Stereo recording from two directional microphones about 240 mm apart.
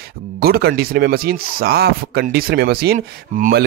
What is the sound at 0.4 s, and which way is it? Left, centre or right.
Speech, right.